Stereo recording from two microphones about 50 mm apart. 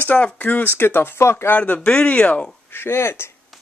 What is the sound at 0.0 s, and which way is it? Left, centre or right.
Speech, left.